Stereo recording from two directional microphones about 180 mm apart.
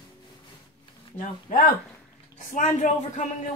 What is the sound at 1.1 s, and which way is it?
Speech, 50° left (ahead or behind).